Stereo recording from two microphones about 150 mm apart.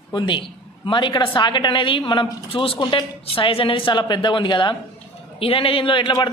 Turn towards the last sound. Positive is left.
turn(degrees=30)  # may be behind; listen again after turning